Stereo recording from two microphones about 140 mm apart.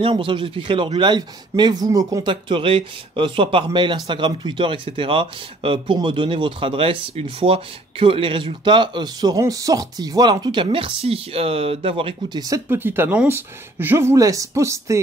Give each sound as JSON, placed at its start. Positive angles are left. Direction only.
{"t": 0.0, "sound": "speech", "side_deg": -40}
{"t": 2.4, "sound": "speech", "side_deg": -35}
{"t": 12.4, "sound": "speech", "side_deg": -25}
{"t": 12.6, "sound": "speech", "side_deg": -15}